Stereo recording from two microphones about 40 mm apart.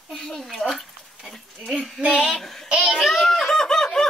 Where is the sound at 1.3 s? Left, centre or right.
Left.